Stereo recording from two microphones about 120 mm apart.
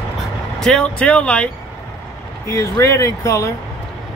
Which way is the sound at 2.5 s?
25° left (ahead or behind).